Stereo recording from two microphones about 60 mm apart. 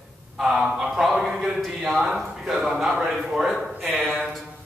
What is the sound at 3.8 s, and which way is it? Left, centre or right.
Speech, right.